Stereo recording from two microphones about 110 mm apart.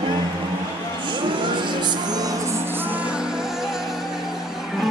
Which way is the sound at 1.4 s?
45° right (ahead or behind).